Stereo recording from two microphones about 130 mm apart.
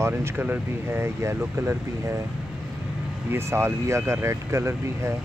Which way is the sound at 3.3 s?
20° right (ahead or behind).